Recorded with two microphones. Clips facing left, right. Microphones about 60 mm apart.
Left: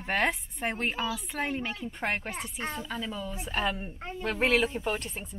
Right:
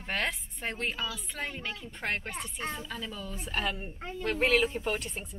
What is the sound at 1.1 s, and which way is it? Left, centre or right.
Speech, centre.